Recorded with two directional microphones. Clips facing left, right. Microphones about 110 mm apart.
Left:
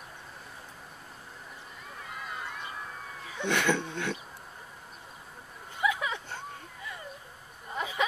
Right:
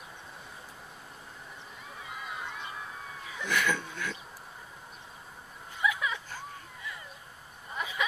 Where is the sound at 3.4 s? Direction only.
30° left (ahead or behind).